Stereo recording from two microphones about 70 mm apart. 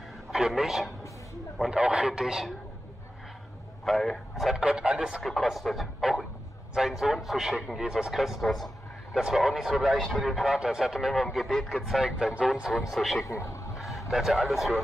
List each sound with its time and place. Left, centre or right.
0.3 s a man's voice: centre
3.8 s speech: centre
5.2 s speech: centre
10.4 s speech: centre
12.0 s speech: centre
13.2 s speech: left
13.7 s speech: centre